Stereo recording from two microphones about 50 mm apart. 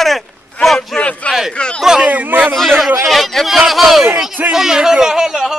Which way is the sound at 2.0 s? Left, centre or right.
Right.